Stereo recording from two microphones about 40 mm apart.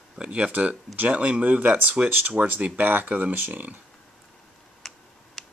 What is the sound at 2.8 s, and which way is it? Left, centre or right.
Speech, right.